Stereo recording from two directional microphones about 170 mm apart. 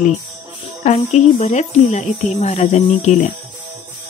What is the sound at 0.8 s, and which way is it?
Speech, 40° left (ahead or behind).